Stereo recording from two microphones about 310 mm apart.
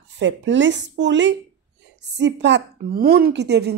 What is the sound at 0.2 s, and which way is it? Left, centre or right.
Speech, right.